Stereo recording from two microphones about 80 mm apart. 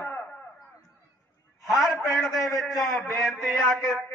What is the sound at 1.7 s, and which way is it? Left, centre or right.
A man's voice, centre.